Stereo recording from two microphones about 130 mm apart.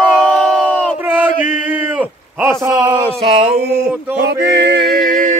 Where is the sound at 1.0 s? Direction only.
15° right (ahead or behind).